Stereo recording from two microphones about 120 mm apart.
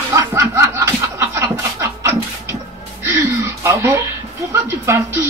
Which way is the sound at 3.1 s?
20° right (ahead or behind).